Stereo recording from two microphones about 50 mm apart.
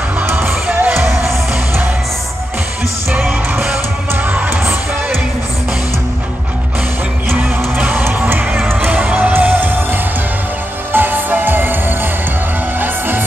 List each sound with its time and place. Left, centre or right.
0.4 s music: right
7.3 s music: right
10.9 s music: right